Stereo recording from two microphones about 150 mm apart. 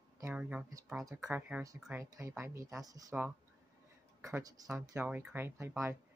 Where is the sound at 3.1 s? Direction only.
5° right (ahead or behind).